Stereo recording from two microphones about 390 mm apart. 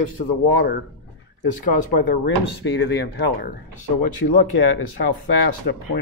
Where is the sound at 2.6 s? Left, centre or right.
Left.